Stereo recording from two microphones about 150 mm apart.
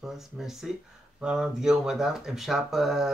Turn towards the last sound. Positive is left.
turn(degrees=0)  # may be behind; listen again after turning